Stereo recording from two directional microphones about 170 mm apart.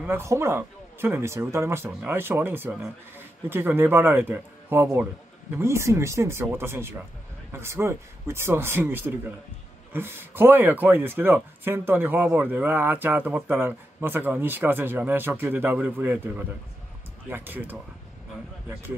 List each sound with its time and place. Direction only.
0.0 s speech: 15° right (ahead or behind)